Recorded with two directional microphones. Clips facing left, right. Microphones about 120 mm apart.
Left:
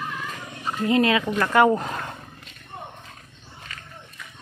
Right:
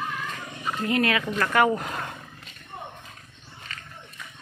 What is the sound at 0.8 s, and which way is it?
Speech, 25° left (ahead or behind).